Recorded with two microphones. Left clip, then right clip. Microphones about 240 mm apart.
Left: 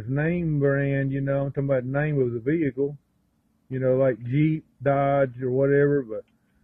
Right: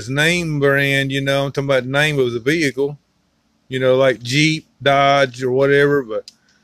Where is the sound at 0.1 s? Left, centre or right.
Right.